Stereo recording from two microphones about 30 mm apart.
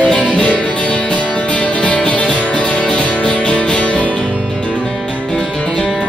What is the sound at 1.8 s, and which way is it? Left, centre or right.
Music, left.